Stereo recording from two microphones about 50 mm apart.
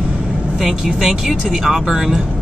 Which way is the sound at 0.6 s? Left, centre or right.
Centre.